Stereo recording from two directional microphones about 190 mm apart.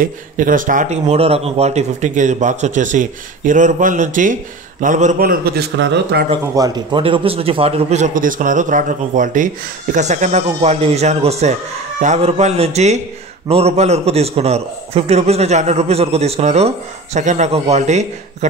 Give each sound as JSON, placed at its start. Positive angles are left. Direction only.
{"t": 0.0, "sound": "a man's voice", "side_deg": -45}
{"t": 6.5, "sound": "a man's voice", "side_deg": -20}
{"t": 7.0, "sound": "a man's voice", "side_deg": -30}